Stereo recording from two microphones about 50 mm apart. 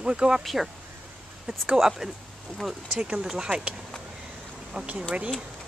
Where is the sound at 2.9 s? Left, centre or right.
Right.